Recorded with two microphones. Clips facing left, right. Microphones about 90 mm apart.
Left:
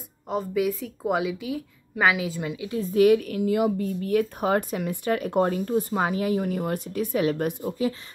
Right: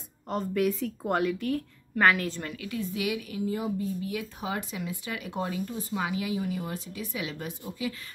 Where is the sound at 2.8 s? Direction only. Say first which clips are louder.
Left 15 dB; 45° left (ahead or behind); by 3.8 s 75° left (ahead or behind).